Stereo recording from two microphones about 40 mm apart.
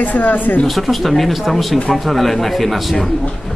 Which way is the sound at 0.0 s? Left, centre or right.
Left.